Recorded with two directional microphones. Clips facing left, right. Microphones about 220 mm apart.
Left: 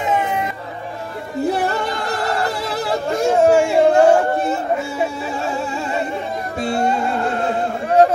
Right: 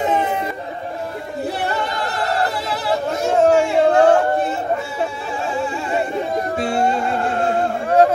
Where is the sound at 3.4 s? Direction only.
10° left (ahead or behind).